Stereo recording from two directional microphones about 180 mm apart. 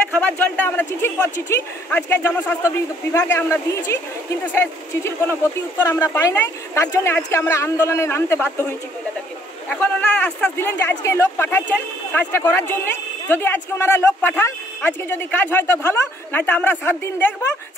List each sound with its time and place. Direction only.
0.1 s speech: 10° left (ahead or behind)